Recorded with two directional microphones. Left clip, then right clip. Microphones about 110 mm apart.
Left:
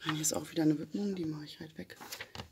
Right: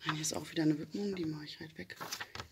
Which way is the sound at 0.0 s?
50° left (ahead or behind).